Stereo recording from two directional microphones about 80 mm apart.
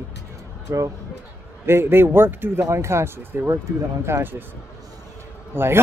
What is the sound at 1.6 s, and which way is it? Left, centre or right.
Speech, right.